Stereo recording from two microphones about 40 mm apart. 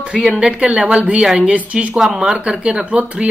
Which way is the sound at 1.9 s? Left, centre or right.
Centre.